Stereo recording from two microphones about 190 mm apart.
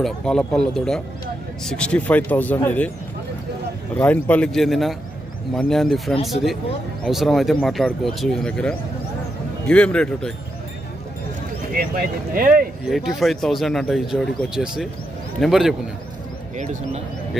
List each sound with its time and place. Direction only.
0.0 s speech: 5° left (ahead or behind)
3.9 s speech: 10° left (ahead or behind)
11.7 s speech: 50° right (ahead or behind)
12.8 s speech: centre (ahead or behind)
16.5 s speech: 35° right (ahead or behind)